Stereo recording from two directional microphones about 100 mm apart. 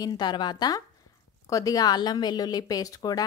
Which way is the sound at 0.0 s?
50° left (ahead or behind).